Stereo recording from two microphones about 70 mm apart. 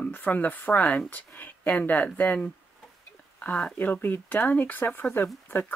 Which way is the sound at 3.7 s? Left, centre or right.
Left.